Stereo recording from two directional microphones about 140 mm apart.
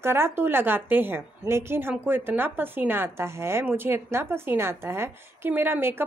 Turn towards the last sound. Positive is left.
turn(degrees=-15)  # may be behind; listen again after turning